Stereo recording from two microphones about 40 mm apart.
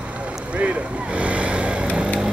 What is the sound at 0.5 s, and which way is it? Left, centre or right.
Vehicle, right.